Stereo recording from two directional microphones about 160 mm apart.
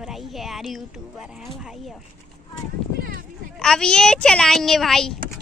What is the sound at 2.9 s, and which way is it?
Run, 65° right (ahead or behind).